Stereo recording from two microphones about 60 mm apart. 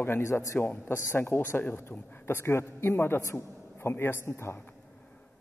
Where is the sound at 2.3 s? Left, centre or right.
Left.